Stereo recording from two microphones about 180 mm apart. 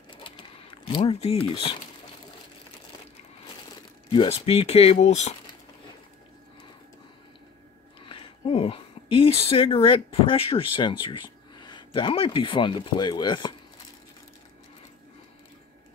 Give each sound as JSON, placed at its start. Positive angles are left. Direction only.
{"t": 0.2, "sound": "a sound", "side_deg": 30}
{"t": 4.1, "sound": "speech", "side_deg": 30}
{"t": 8.1, "sound": "speech", "side_deg": 30}